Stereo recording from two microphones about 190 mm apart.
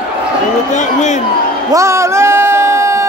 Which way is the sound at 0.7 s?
40° left (ahead or behind).